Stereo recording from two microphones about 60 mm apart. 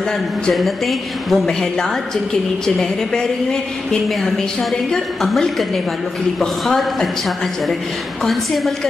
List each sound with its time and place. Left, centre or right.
0.5 s a woman's voice: centre